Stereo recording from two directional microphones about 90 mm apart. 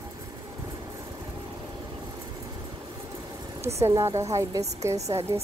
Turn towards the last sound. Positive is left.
turn(degrees=-30)  # may be behind; listen again after turning